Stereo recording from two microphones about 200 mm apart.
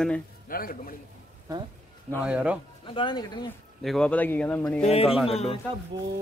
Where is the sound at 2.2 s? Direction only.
5° right (ahead or behind).